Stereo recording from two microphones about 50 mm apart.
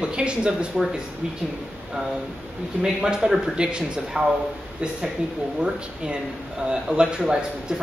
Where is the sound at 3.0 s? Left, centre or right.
Centre.